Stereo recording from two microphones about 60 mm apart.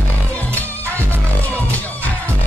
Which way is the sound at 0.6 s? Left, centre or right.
Left.